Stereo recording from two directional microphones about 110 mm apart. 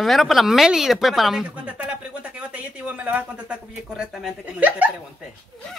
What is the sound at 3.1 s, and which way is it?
Speech, 15° right (ahead or behind).